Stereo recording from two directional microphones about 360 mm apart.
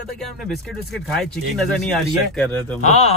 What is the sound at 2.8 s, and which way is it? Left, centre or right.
Speech, centre.